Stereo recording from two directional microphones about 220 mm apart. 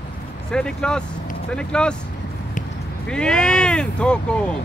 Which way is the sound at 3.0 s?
5° left (ahead or behind).